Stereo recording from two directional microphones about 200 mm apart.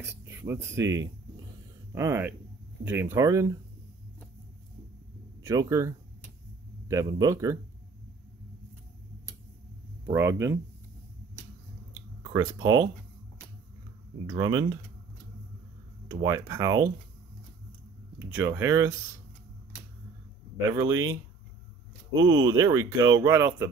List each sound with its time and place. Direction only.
0.2 s speech: 10° right (ahead or behind)
5.4 s speech: 15° right (ahead or behind)
10.0 s speech: 15° right (ahead or behind)
12.2 s speech: 15° right (ahead or behind)
14.2 s speech: 20° right (ahead or behind)
16.1 s speech: 20° right (ahead or behind)
18.2 s speech: 10° right (ahead or behind)
20.7 s speech: 15° right (ahead or behind)
22.2 s speech: 20° right (ahead or behind)